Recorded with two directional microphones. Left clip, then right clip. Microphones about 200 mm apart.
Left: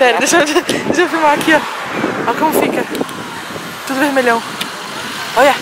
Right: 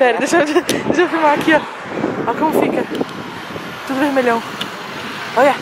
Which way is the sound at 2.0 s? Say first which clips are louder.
Left 2 dB; 20° right (ahead or behind).